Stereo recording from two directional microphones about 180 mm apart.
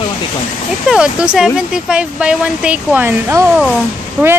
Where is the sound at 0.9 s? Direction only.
5° right (ahead or behind).